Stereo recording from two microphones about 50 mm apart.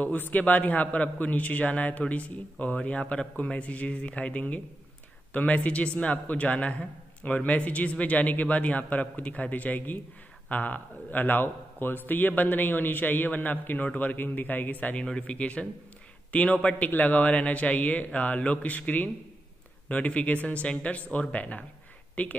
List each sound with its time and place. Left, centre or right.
0.0 s a man's voice: left
15.0 s a man's voice: centre